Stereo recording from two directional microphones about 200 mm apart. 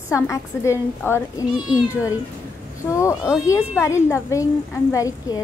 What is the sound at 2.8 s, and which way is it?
Speech, 15° left (ahead or behind).